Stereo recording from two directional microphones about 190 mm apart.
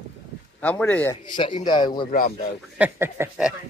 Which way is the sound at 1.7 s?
25° left (ahead or behind).